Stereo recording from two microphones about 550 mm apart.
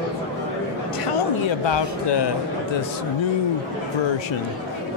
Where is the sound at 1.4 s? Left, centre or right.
Left.